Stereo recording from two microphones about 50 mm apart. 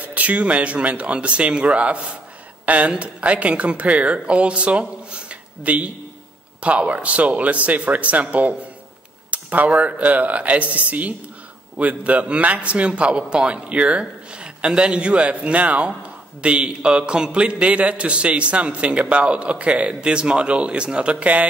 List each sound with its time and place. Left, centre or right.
0.0 s a man's voice: right